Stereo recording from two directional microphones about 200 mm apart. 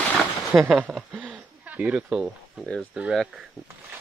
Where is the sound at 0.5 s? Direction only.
5° right (ahead or behind).